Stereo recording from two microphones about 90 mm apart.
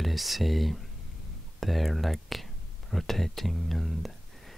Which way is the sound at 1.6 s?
Centre (ahead or behind).